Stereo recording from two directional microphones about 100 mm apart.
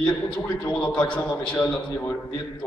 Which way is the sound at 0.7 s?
15° left (ahead or behind).